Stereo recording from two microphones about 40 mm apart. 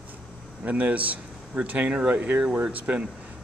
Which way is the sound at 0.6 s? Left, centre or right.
Right.